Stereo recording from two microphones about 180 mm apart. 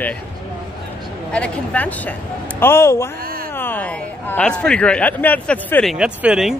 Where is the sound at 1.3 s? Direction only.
5° left (ahead or behind).